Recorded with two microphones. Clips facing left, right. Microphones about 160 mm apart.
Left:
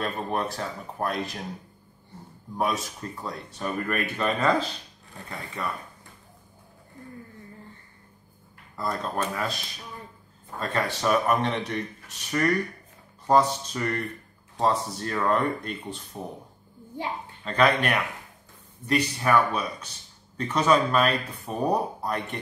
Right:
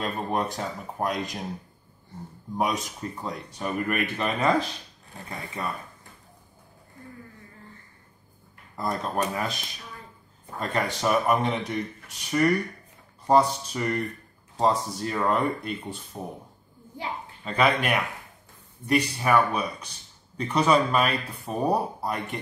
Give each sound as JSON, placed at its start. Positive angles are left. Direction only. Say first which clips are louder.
{"t": 0.0, "sound": "speech", "louder": "right 1 dB", "side_deg": -15}
{"t": 2.5, "sound": "speech", "louder": "even", "side_deg": -15}
{"t": 8.7, "sound": "speech", "louder": "right 1 dB", "side_deg": -20}
{"t": 10.6, "sound": "speech", "louder": "even", "side_deg": -15}
{"t": 17.5, "sound": "speech", "louder": "left 1 dB", "side_deg": -10}